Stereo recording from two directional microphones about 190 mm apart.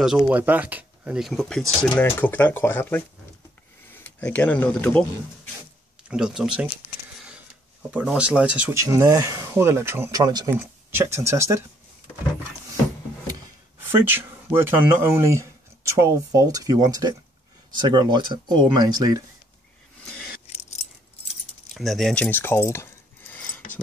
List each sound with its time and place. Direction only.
0.0 s speech: 5° right (ahead or behind)
6.0 s speech: 5° right (ahead or behind)
7.9 s speech: 5° right (ahead or behind)
13.9 s speech: 10° right (ahead or behind)
20.5 s keys jangling: 35° left (ahead or behind)
21.7 s keys jangling: centre (ahead or behind)